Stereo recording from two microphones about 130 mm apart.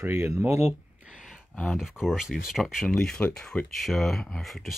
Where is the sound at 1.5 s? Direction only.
5° left (ahead or behind).